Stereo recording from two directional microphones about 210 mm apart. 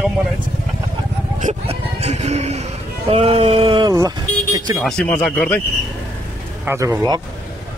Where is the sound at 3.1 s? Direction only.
30° right (ahead or behind).